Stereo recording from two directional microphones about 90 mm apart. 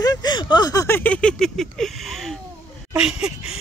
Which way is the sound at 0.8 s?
25° left (ahead or behind).